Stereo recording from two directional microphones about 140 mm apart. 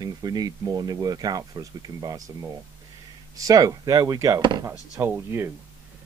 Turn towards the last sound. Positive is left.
turn(degrees=-15)  # may be behind; listen again after turning